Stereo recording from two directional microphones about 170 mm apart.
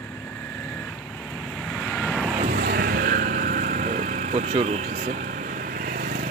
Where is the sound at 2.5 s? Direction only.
65° right (ahead or behind).